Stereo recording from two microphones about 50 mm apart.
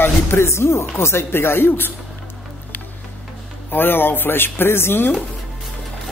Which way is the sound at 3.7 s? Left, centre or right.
Left.